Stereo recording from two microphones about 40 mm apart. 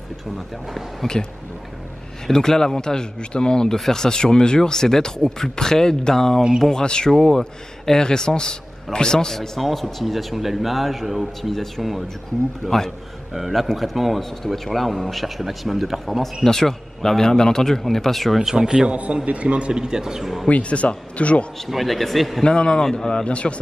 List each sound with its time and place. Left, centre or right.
2.2 s speech: centre
7.1 s speech: centre
9.6 s speech: centre
13.3 s speech: centre
16.4 s speech: centre
18.4 s speech: centre
18.9 s a man's voice: right
19.8 s speech: centre
20.4 s speech: left
21.6 s speech: centre
22.4 s speech: left